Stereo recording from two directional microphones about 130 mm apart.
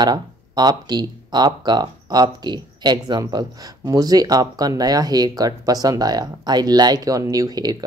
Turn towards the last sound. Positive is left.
turn(degrees=-30)  # may be behind; listen again after turning